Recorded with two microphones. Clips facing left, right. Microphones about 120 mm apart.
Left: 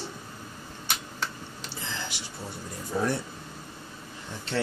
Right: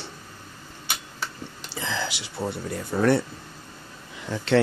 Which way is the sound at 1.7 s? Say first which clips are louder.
Right 8 dB; 90° right.